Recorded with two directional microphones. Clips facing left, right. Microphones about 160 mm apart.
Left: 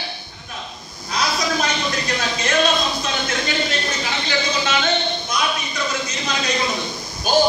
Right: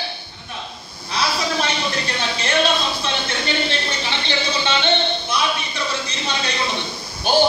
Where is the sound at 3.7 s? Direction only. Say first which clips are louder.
Even; 30° right (ahead or behind).